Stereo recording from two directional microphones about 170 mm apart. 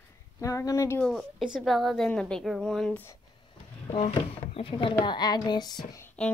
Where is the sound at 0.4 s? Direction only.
20° left (ahead or behind).